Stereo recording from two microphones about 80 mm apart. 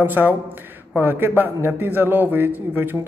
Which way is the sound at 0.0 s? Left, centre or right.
Right.